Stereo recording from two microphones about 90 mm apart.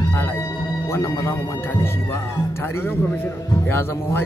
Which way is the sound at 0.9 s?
30° left (ahead or behind).